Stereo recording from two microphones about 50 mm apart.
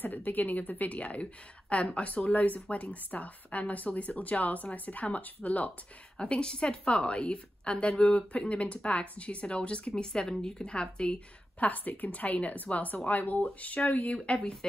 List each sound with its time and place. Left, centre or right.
0.0 s a woman's voice: left
11.6 s a woman's voice: left; by 14.7 s centre